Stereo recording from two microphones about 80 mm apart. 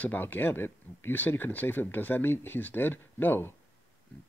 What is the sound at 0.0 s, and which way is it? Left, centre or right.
Speech, left.